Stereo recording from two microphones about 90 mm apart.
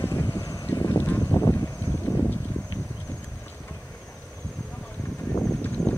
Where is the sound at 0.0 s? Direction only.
35° left (ahead or behind).